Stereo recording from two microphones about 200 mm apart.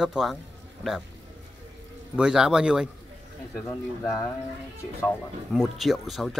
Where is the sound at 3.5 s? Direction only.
15° left (ahead or behind).